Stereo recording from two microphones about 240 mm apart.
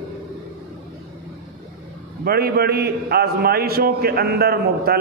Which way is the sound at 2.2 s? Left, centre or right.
Right.